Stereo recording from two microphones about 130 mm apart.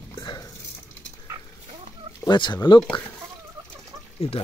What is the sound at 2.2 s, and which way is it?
Speech, 35° left (ahead or behind).